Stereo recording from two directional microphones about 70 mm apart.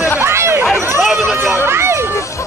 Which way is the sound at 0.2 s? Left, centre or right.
Right.